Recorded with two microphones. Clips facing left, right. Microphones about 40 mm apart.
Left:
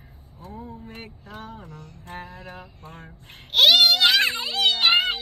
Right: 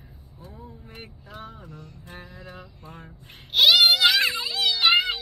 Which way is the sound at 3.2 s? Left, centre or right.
Left.